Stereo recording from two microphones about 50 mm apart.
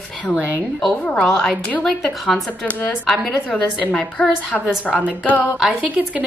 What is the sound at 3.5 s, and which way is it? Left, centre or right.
A woman's voice, left.